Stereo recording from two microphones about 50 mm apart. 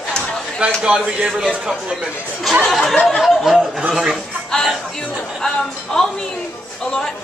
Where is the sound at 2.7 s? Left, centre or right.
Centre.